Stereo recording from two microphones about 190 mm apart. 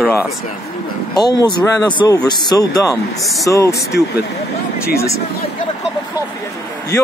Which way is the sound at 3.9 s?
60° left (ahead or behind).